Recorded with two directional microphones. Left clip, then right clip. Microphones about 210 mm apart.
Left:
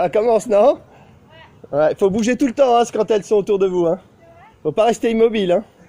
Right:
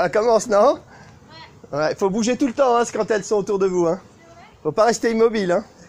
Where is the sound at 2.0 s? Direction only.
35° left (ahead or behind).